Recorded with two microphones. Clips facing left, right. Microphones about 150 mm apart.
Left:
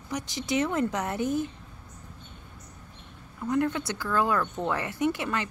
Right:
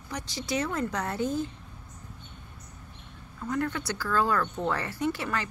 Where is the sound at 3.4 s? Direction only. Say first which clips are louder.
Left 3 dB; 20° left (ahead or behind).